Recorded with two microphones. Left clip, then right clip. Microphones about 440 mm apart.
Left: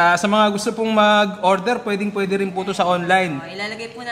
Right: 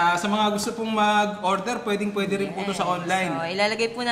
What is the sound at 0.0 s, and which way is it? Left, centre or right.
A man's voice, left.